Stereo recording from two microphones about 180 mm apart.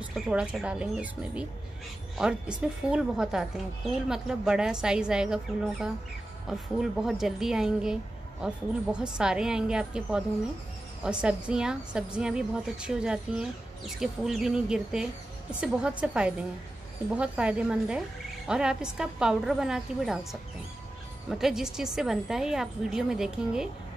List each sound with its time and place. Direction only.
0.0 s a woman's voice: 5° right (ahead or behind)